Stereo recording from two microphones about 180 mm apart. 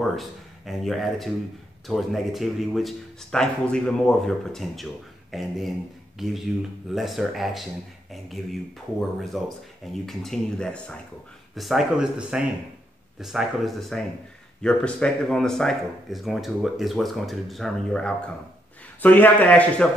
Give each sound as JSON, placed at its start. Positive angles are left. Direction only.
{"t": 0.0, "sound": "speech", "side_deg": 0}